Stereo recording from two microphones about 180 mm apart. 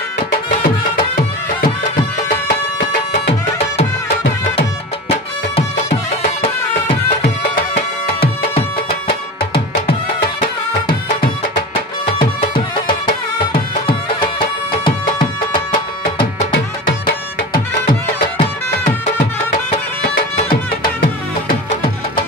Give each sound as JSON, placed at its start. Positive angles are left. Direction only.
{"t": 8.1, "sound": "music", "side_deg": 30}
{"t": 13.4, "sound": "music", "side_deg": 25}
{"t": 17.8, "sound": "music", "side_deg": 30}